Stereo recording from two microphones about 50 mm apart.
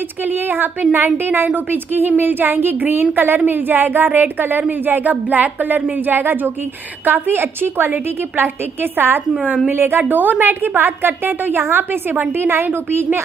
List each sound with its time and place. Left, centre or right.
0.3 s a woman's voice: right